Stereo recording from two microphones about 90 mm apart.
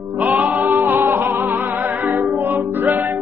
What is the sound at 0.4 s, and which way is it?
Music, 20° right (ahead or behind).